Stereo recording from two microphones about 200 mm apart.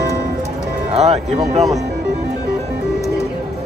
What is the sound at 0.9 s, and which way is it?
Music, 35° right (ahead or behind).